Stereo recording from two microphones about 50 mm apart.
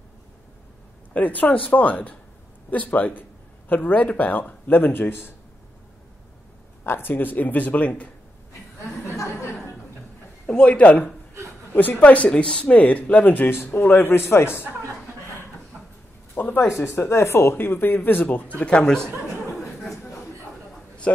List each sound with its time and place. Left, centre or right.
1.1 s speech: left
6.8 s speech: left
9.1 s a sound: left
10.4 s a man's voice: left
12.3 s speech: centre; by 14.1 s left
14.3 s a man's voice: left
16.4 s a sound: left
16.9 s speech: left
18.2 s speech: left
18.9 s speech: centre